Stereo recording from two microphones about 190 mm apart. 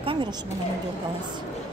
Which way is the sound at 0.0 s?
25° right (ahead or behind).